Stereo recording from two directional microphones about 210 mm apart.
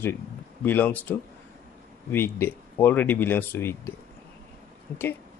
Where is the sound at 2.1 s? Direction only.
10° left (ahead or behind).